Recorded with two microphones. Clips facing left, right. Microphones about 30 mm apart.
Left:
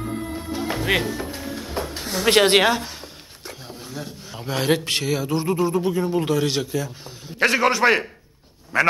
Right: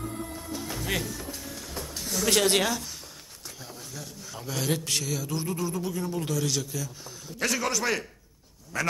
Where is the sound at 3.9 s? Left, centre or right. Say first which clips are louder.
Left 7 dB; left.